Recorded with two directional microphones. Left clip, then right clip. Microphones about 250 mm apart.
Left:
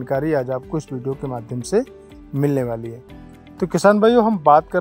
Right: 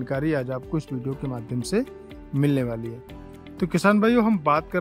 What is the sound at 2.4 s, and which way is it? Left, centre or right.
Speech, centre.